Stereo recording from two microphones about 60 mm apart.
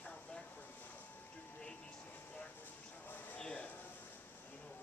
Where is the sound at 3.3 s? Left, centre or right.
Centre.